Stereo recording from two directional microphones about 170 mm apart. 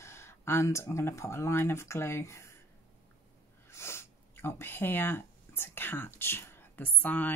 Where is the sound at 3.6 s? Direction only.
15° left (ahead or behind).